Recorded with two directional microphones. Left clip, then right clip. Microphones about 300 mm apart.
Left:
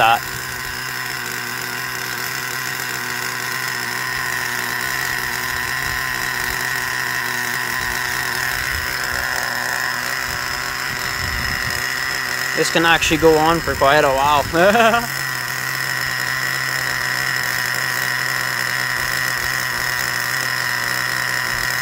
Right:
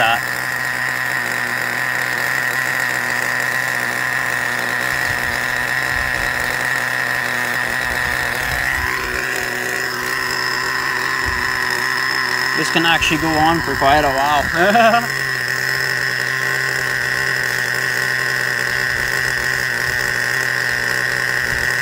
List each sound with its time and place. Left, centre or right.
12.7 s speech: centre